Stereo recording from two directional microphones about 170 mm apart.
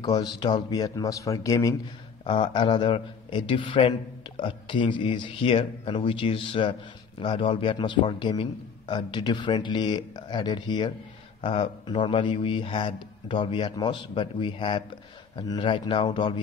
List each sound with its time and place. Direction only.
0.0 s a man's voice: 25° left (ahead or behind)